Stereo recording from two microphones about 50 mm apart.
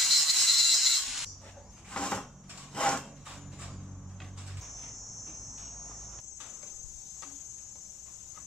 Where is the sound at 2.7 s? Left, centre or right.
Left.